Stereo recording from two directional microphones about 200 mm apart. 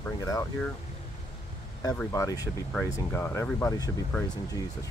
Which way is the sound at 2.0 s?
15° left (ahead or behind).